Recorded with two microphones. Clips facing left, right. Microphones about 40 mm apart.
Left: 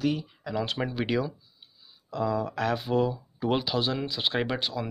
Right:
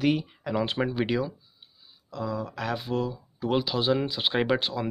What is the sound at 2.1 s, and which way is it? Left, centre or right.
Speech, centre.